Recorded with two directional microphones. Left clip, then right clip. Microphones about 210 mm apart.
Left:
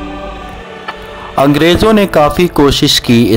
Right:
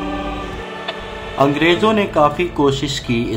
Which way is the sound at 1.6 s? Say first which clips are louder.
Left 6 dB; 45° left (ahead or behind).